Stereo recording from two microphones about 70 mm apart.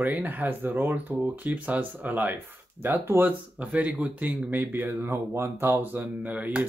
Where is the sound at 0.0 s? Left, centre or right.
Right.